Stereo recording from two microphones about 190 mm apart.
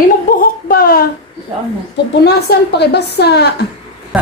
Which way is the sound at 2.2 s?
60° left (ahead or behind).